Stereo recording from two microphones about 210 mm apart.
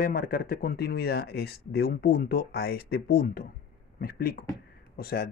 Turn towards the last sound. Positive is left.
turn(degrees=45)  # may be behind; listen again after turning